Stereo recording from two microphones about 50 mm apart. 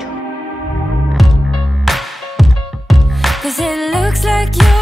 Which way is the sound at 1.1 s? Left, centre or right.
Centre.